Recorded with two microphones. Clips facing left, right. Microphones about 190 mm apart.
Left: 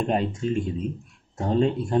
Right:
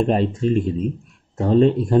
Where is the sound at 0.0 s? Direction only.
40° right (ahead or behind).